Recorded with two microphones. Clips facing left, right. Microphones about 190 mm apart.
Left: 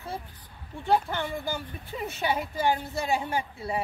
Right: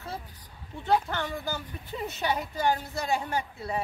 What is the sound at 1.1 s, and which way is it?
A woman's voice, 15° left (ahead or behind).